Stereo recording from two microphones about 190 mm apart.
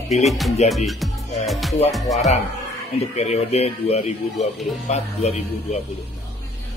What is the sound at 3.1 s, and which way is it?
Speech, 35° left (ahead or behind).